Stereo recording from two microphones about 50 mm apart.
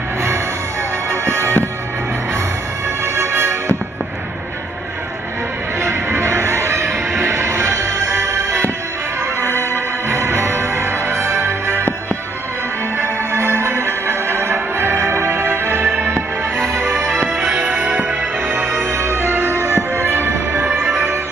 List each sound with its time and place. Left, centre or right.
1.2 s music: right
3.2 s music: right
5.8 s music: right
12.9 s music: right
17.1 s music: centre
18.8 s music: right
20.5 s music: centre